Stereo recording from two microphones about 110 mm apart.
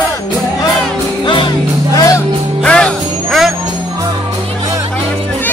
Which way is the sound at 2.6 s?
10° left (ahead or behind).